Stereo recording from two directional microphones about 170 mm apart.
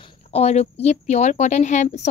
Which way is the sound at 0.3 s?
40° left (ahead or behind).